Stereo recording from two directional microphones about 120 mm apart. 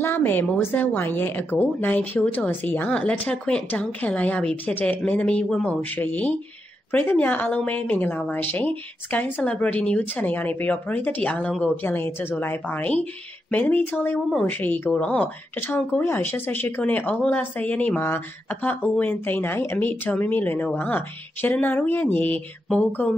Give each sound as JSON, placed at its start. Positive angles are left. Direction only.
{"t": 0.0, "sound": "a woman's voice", "side_deg": 15}